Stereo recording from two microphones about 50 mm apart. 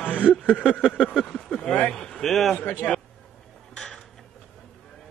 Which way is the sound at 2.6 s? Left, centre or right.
Left.